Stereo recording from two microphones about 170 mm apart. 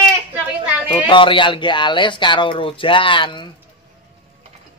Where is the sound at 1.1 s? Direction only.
30° left (ahead or behind).